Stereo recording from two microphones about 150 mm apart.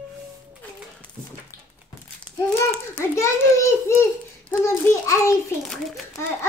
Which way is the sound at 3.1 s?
20° left (ahead or behind).